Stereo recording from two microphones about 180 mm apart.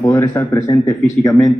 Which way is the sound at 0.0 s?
20° left (ahead or behind).